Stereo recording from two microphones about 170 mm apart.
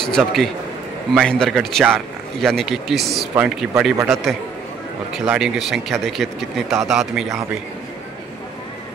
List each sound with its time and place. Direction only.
0.0 s speech: centre (ahead or behind)